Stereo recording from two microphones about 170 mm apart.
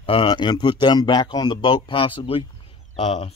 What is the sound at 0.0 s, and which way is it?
A man's voice, 30° left (ahead or behind).